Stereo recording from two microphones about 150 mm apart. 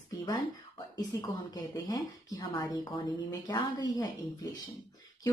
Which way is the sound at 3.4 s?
25° left (ahead or behind).